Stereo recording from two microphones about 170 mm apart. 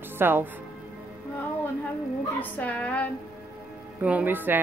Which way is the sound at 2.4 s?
10° left (ahead or behind).